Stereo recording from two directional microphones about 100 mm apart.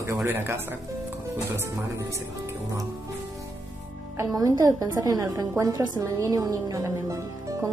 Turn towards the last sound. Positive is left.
turn(degrees=-30)  # may be behind; listen again after turning